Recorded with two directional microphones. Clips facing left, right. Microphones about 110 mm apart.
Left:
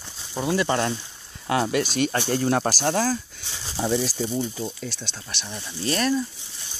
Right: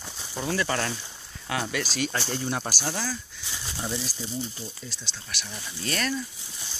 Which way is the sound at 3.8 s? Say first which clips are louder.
Left 10 dB; 80° left.